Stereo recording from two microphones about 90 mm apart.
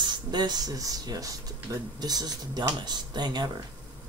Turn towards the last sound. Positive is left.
turn(degrees=-50)  # may be behind; listen again after turning